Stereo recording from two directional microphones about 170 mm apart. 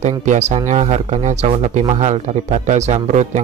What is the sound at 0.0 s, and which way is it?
Speech, 45° right (ahead or behind).